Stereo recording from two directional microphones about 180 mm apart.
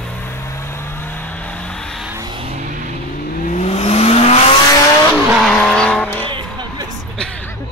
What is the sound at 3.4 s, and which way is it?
Vehicle, 40° left (ahead or behind).